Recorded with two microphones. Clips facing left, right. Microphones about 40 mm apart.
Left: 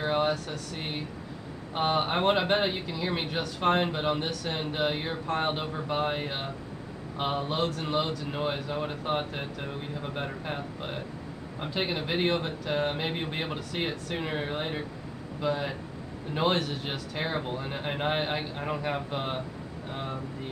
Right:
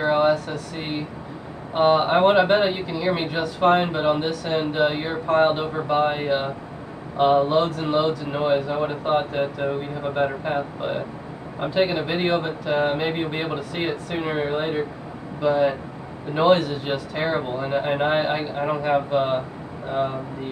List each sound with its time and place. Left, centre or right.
0.0 s air conditioning: centre
1.7 s speech: centre